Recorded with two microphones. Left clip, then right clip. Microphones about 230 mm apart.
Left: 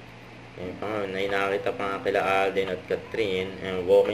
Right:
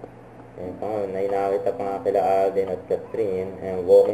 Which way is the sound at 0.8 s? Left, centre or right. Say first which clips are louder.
Right 3 dB; left.